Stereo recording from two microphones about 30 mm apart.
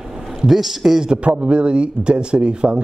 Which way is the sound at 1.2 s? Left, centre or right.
Right.